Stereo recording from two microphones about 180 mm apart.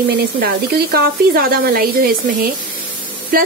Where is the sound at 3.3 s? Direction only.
55° right (ahead or behind).